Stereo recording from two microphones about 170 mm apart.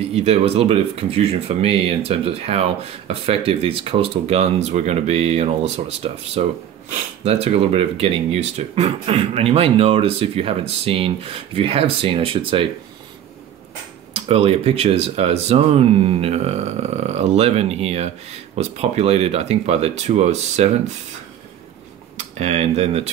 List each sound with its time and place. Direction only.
0.1 s speech: 35° right (ahead or behind)
14.1 s speech: 35° right (ahead or behind)
22.1 s speech: 40° right (ahead or behind)